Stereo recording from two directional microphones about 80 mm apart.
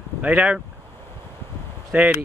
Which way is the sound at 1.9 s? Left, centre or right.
Right.